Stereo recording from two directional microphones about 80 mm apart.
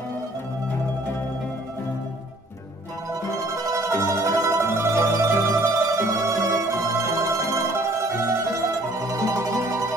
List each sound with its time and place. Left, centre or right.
3.2 s mandolin: right